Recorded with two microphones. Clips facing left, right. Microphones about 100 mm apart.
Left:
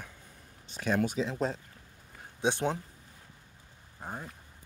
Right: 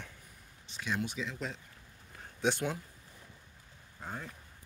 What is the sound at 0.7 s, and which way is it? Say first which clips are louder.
Speech: left 7 dB; 45° left (ahead or behind).